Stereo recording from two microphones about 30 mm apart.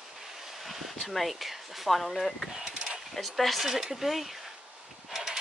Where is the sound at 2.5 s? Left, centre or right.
Centre.